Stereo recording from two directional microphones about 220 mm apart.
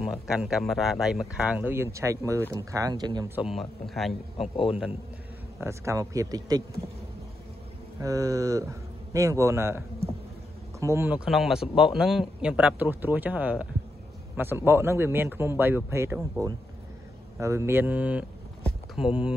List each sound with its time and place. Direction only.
0.0 s a man's voice: centre (ahead or behind); by 3.3 s 20° right (ahead or behind)
3.3 s speech: centre (ahead or behind)
4.4 s a man's voice: 25° left (ahead or behind)
5.6 s a man's voice: 15° right (ahead or behind)
8.0 s a man's voice: 15° right (ahead or behind)
18.6 s a sound: 5° right (ahead or behind)